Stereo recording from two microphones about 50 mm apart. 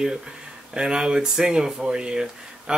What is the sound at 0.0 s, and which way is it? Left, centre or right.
Speech, centre.